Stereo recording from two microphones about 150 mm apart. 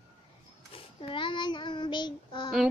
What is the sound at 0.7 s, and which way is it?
Child singing, 35° left (ahead or behind).